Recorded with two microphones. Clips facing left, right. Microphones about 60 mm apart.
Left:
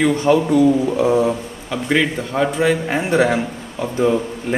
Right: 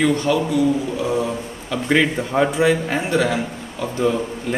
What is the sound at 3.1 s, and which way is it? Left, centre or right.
A man's voice, left.